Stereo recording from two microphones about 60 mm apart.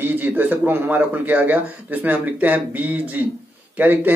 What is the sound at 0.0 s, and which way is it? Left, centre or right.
Speech, right.